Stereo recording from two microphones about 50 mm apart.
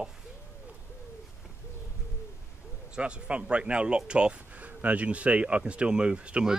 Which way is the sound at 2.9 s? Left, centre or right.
Right.